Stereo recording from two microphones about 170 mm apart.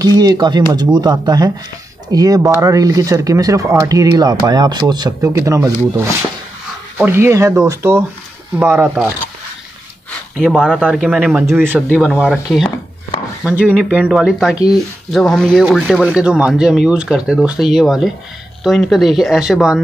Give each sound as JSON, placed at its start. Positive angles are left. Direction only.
{"t": 0.0, "sound": "speech", "side_deg": -20}
{"t": 10.4, "sound": "speech", "side_deg": 0}